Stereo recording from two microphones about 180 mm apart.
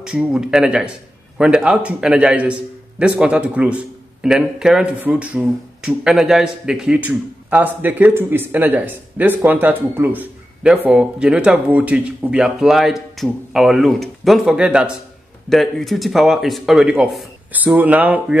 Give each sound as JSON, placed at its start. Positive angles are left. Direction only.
{"t": 0.0, "sound": "a man's voice", "side_deg": -5}